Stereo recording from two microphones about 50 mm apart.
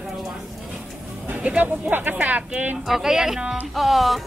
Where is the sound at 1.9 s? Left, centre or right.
Right.